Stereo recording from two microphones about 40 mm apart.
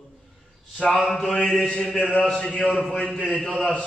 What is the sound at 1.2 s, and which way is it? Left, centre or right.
Mantra, left.